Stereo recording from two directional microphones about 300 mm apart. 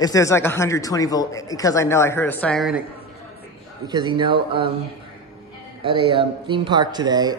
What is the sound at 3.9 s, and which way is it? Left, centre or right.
Speech, centre.